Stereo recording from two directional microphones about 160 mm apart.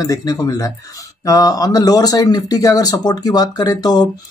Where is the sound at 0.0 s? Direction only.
20° left (ahead or behind).